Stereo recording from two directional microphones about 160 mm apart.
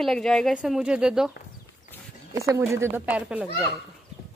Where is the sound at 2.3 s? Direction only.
20° right (ahead or behind).